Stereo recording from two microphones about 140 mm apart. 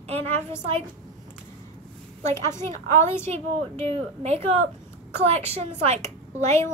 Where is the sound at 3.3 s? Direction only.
50° right (ahead or behind).